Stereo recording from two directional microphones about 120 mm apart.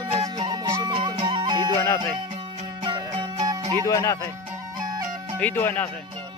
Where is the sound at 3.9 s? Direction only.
30° left (ahead or behind).